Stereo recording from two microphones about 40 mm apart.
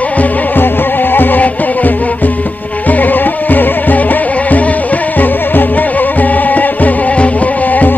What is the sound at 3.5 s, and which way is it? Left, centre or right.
Music, left.